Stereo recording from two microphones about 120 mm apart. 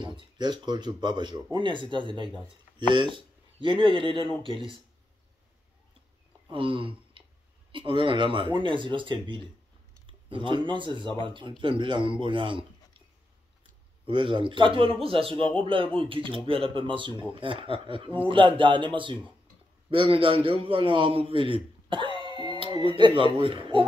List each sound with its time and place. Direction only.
0.0 s speech: 40° right (ahead or behind)
6.5 s speech: 45° right (ahead or behind)
14.0 s speech: 45° right (ahead or behind)